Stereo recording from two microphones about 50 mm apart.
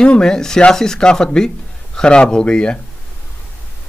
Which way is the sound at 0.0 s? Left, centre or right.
Centre.